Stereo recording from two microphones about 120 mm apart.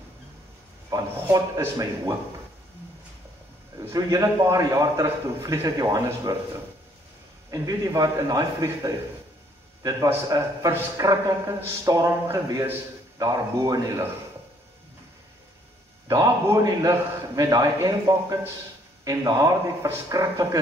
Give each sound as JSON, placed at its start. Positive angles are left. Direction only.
{"t": 0.8, "sound": "a man's voice", "side_deg": -30}
{"t": 3.9, "sound": "a man's voice", "side_deg": -30}
{"t": 7.5, "sound": "a man's voice", "side_deg": -30}
{"t": 10.0, "sound": "a man's voice", "side_deg": -25}
{"t": 16.1, "sound": "a man's voice", "side_deg": -25}